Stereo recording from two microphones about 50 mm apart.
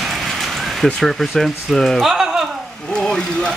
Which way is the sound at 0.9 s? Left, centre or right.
Centre.